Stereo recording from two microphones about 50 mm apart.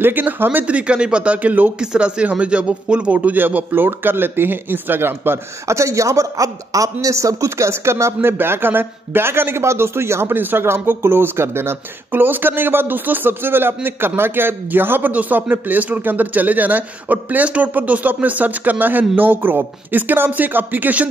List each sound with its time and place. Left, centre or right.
0.0 s a man's voice: right
0.7 s speech: right
1.8 s a man's voice: centre; by 5.4 s right
5.7 s a man's voice: right
10.3 s a man's voice: right
12.1 s a man's voice: right